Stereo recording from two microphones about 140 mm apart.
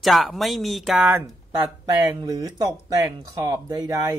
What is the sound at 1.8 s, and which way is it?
Speech, 25° right (ahead or behind).